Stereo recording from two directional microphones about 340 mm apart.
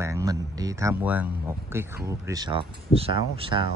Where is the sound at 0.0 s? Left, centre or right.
Centre.